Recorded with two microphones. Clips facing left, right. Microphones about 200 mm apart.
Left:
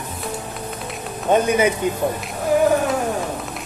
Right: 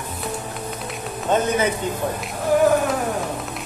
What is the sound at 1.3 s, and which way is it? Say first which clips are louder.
Speech: left 3 dB; 15° left (ahead or behind).